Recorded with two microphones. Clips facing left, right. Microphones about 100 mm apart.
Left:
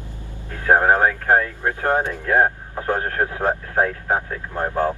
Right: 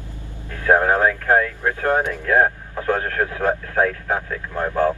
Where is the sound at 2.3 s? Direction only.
30° left (ahead or behind).